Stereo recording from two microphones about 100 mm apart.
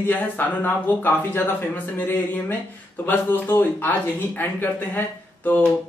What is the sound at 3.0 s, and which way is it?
Speech, 20° left (ahead or behind).